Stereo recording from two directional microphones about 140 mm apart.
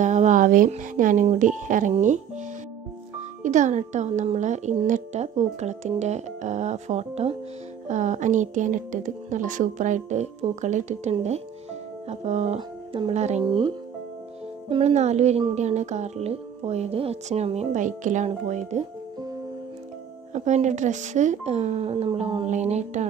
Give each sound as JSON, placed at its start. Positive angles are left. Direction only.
{"t": 0.0, "sound": "a sound", "side_deg": -60}
{"t": 0.7, "sound": "speech", "side_deg": -65}
{"t": 12.5, "sound": "speech", "side_deg": -40}
{"t": 13.1, "sound": "speech", "side_deg": -55}
{"t": 13.4, "sound": "speech", "side_deg": -30}
{"t": 14.7, "sound": "speech", "side_deg": -50}
{"t": 20.3, "sound": "speech", "side_deg": -55}